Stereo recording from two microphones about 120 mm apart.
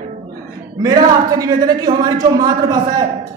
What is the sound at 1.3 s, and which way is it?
Speech, 30° right (ahead or behind).